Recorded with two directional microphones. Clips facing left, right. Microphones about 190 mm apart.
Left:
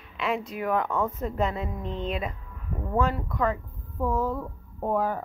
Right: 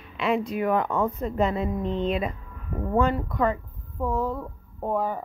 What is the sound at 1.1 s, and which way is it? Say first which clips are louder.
Speech: right 3 dB; centre (ahead or behind).